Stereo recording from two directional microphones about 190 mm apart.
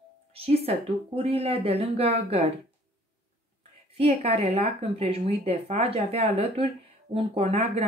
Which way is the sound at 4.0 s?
35° right (ahead or behind).